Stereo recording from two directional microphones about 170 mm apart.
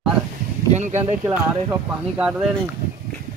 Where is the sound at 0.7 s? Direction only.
45° right (ahead or behind).